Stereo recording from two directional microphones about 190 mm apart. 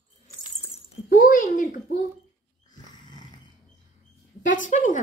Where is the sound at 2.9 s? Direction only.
20° left (ahead or behind).